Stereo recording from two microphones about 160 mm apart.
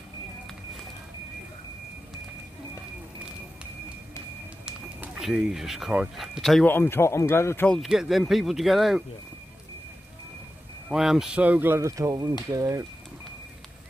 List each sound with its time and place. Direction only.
4.6 s speech: 5° right (ahead or behind)
6.7 s a man's voice: 15° left (ahead or behind)
7.7 s speech: centre (ahead or behind)
10.9 s speech: 5° right (ahead or behind); by 12.8 s 20° right (ahead or behind)